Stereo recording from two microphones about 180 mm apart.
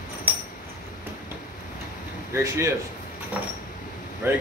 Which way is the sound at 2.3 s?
15° right (ahead or behind).